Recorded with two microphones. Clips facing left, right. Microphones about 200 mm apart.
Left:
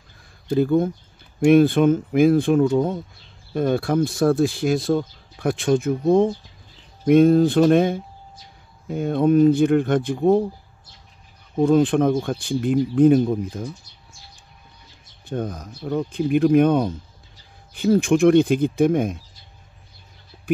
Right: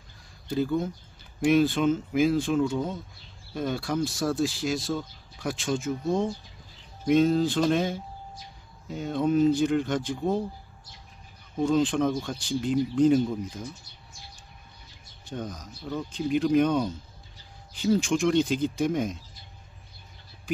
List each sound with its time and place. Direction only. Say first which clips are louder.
0.5 s speech: left 8 dB; 55° left (ahead or behind)
11.6 s speech: left 7 dB; 55° left (ahead or behind)
15.2 s speech: left 8 dB; 55° left (ahead or behind)